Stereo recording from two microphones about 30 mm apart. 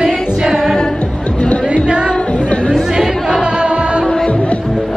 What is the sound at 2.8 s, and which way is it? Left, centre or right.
Chatter, centre.